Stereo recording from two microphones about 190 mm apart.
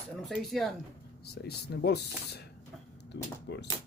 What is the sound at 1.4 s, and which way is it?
Speech, 60° left (ahead or behind).